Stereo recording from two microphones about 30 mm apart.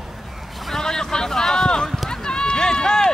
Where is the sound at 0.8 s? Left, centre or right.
Centre.